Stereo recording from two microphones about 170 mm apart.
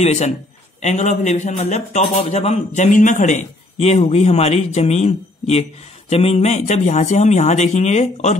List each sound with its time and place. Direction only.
0.0 s a man's voice: 40° left (ahead or behind)